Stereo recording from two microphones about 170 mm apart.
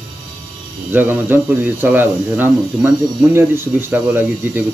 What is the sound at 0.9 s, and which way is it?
Speech, 10° right (ahead or behind).